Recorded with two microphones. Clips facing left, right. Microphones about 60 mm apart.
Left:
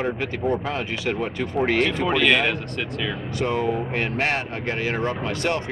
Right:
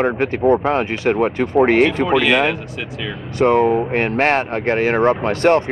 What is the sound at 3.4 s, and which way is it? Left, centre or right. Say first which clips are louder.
Speech: right 10 dB; right.